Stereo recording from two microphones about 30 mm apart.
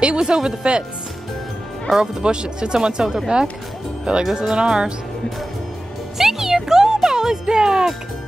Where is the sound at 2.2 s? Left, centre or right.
Right.